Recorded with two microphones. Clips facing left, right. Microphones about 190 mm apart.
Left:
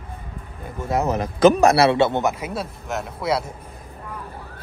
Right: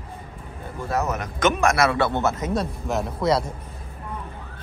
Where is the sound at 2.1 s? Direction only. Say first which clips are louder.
Even; 15° left (ahead or behind).